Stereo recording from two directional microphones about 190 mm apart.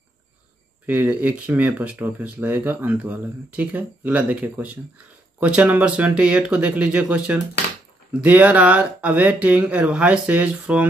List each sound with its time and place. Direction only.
0.8 s speech: 10° right (ahead or behind)